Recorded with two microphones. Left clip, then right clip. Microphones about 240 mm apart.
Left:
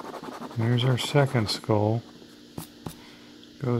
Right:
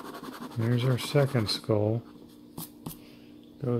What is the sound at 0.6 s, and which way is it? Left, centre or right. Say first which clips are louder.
Speech: left 3 dB; centre.